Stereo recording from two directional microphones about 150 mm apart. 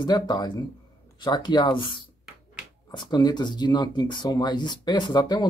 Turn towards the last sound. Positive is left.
turn(degrees=25)  # may be behind; listen again after turning